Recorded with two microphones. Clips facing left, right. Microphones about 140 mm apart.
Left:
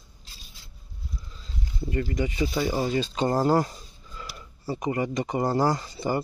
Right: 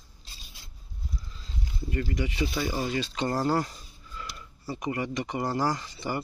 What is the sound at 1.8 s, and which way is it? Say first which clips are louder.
Speech: left 3 dB; 30° left (ahead or behind).